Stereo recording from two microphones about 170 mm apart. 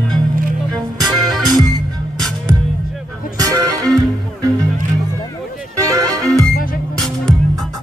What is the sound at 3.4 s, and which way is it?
Music, 20° right (ahead or behind).